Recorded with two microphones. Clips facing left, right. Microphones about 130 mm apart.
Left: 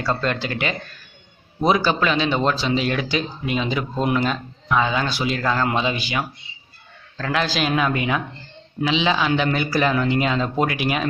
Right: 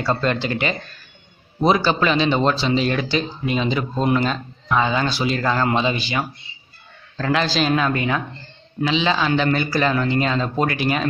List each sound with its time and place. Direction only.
0.0 s a man's voice: 5° right (ahead or behind)
7.4 s a man's voice: 10° left (ahead or behind)